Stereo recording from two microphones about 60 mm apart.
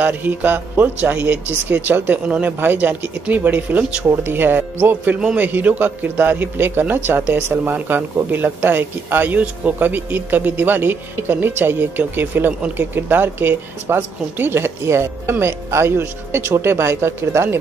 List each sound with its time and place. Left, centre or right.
0.0 s speech: right
4.1 s speech: right